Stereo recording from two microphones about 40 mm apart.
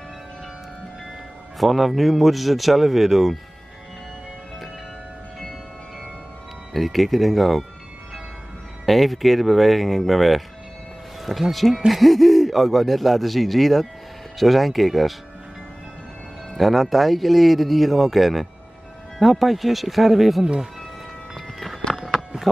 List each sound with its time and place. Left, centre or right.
1.6 s speech: centre
6.7 s speech: centre
8.8 s speech: centre
16.5 s speech: centre
21.9 s a sound: centre